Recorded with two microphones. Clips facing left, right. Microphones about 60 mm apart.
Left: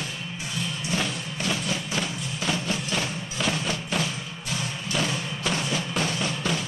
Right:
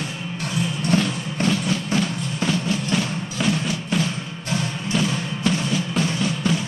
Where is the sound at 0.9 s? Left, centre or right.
Right.